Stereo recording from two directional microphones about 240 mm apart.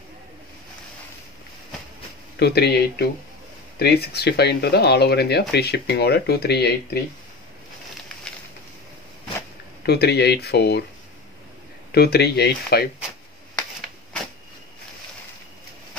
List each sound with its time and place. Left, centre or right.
2.3 s speech: left
9.8 s speech: left
11.9 s speech: left